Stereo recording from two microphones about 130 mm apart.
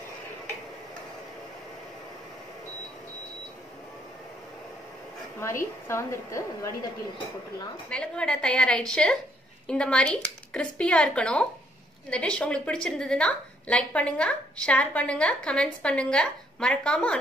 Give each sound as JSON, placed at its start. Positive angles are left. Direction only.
{"t": 5.9, "sound": "a woman's voice", "side_deg": 20}
{"t": 7.9, "sound": "a woman's voice", "side_deg": 5}